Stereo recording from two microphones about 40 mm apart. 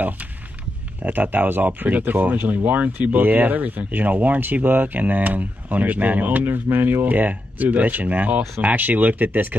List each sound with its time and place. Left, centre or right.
1.0 s speech: right